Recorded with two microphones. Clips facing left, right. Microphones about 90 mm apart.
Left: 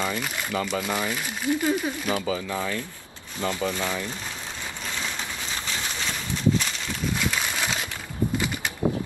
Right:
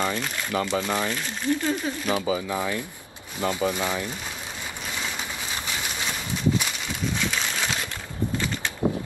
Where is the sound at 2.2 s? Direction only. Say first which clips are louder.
Right 2 dB; 15° right (ahead or behind).